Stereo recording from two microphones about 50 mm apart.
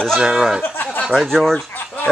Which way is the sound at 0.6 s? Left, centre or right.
Left.